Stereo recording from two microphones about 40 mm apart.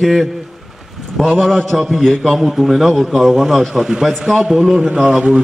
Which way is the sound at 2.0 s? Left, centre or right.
Centre.